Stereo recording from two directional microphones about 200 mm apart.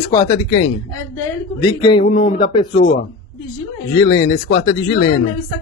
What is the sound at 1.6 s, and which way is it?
Speech, 20° left (ahead or behind).